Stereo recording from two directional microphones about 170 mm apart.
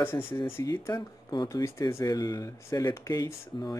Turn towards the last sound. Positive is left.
turn(degrees=25)  # may be behind; listen again after turning